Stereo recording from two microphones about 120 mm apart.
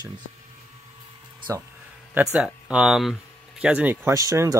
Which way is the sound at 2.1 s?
10° right (ahead or behind).